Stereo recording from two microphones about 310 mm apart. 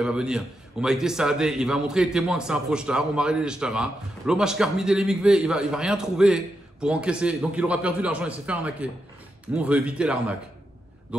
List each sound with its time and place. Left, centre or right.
0.0 s a man's voice: centre